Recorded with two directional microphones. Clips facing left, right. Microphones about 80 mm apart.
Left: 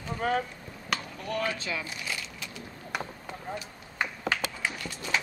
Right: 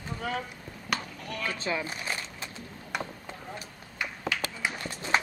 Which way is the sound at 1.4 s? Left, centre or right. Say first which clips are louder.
Right 1 dB; right.